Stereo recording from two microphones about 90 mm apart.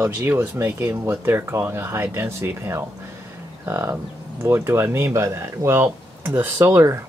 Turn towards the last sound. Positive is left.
turn(degrees=-30)  # may be behind; listen again after turning